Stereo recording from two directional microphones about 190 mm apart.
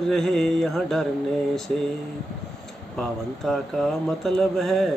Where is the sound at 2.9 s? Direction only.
Centre (ahead or behind).